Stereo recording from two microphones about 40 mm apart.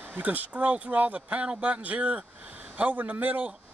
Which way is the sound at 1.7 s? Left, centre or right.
Right.